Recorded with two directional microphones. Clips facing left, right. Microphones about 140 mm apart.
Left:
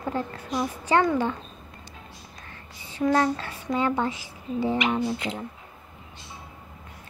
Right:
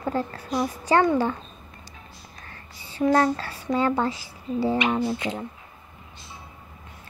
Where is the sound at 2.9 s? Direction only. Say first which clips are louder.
Right 2 dB; 35° right (ahead or behind).